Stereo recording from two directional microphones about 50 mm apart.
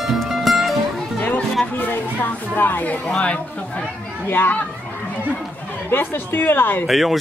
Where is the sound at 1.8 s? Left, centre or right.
Left.